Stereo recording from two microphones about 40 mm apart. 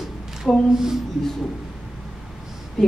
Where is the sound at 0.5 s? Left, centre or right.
Left.